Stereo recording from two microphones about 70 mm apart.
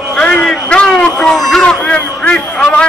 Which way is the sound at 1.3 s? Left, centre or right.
Centre.